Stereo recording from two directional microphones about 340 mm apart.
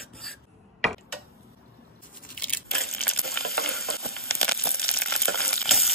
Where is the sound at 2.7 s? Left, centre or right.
Left.